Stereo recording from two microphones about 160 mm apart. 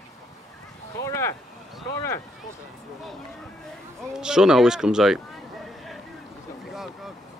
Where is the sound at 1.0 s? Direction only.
15° left (ahead or behind).